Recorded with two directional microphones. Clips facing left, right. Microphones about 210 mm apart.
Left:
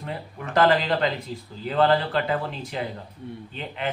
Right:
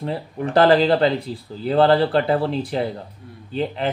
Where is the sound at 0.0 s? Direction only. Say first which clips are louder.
Right 8 dB; 30° right (ahead or behind).